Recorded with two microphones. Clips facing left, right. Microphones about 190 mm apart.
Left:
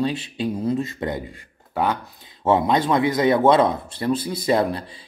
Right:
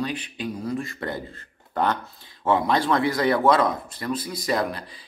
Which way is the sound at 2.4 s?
25° left (ahead or behind).